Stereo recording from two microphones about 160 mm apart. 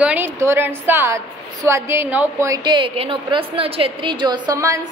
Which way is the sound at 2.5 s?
30° right (ahead or behind).